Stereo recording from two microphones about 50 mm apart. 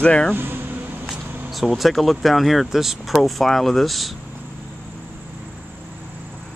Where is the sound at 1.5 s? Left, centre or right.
Centre.